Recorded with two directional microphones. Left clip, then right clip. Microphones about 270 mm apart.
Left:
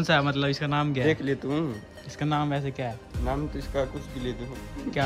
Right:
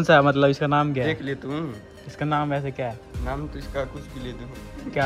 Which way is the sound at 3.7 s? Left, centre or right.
Left.